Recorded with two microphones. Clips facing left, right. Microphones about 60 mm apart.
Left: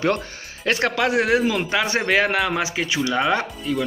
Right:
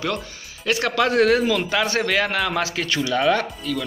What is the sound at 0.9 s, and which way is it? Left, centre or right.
Speech, centre.